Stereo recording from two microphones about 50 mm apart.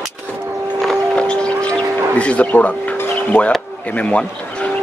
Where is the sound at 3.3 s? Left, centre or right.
Left.